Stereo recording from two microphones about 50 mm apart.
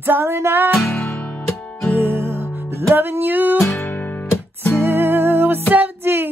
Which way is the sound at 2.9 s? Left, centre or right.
Right.